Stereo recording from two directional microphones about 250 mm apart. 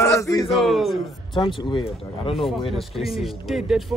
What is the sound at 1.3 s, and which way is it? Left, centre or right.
Speech, centre.